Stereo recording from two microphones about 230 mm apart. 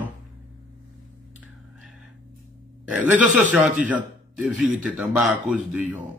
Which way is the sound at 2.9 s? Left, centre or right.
Centre.